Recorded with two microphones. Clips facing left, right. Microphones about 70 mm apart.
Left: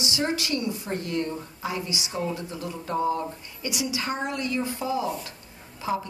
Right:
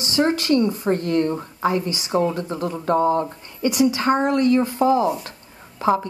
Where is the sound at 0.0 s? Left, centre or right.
Right.